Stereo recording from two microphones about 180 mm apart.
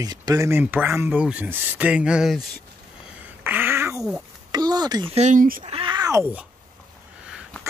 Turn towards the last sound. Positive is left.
turn(degrees=-20)  # may be behind; listen again after turning